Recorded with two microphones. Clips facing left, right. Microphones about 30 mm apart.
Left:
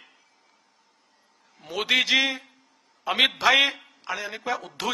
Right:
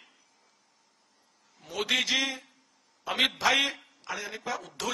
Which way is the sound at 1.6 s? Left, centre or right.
Left.